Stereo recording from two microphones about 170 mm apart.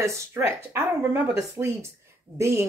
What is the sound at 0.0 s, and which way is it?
Speech, 15° right (ahead or behind).